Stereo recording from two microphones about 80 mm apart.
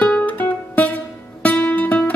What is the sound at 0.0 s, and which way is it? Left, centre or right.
Music, centre.